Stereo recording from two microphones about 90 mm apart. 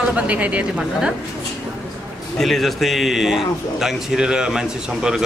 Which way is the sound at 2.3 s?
Centre (ahead or behind).